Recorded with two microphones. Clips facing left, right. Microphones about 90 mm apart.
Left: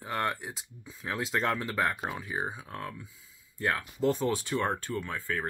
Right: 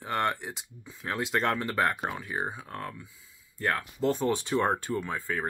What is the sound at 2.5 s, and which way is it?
Speech, 30° right (ahead or behind).